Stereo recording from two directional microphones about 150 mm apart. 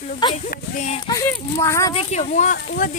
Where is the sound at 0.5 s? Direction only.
50° left (ahead or behind).